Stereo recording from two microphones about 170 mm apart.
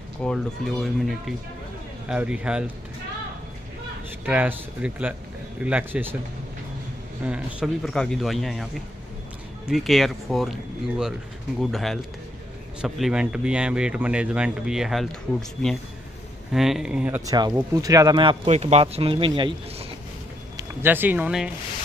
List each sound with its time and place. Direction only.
0.2 s speech: 5° left (ahead or behind)
4.3 s speech: 10° right (ahead or behind)
7.2 s speech: 5° right (ahead or behind)
9.7 s speech: centre (ahead or behind)
16.5 s speech: centre (ahead or behind)
17.3 s speech: 20° right (ahead or behind)
20.5 s speech: 10° right (ahead or behind)